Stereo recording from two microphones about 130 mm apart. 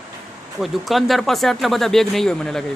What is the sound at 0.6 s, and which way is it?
Speech, centre (ahead or behind).